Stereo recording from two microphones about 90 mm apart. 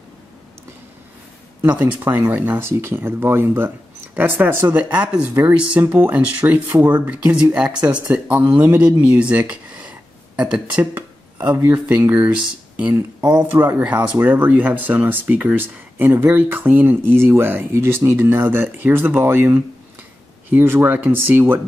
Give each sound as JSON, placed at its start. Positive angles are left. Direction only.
{"t": 1.6, "sound": "speech", "side_deg": -15}
{"t": 10.8, "sound": "a sound", "side_deg": -20}
{"t": 11.5, "sound": "speech", "side_deg": -20}